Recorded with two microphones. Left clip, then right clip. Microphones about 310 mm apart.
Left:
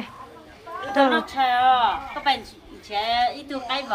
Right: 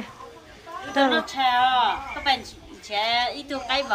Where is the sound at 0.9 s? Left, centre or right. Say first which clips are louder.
Left 2 dB; centre.